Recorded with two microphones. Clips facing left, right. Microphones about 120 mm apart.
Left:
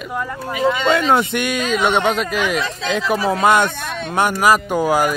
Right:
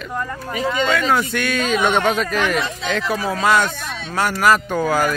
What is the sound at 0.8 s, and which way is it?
Speech, 25° left (ahead or behind).